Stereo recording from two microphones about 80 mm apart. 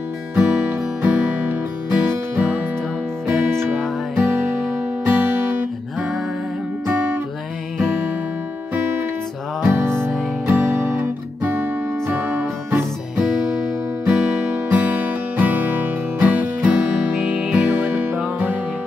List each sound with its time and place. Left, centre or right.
0.4 s music: centre
4.2 s music: right
9.7 s music: right
14.0 s music: centre